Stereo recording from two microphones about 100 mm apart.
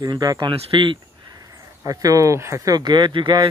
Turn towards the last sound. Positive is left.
turn(degrees=-50)  # may be behind; listen again after turning